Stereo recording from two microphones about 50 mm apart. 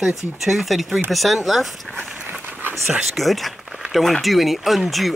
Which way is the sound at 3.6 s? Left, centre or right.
Centre.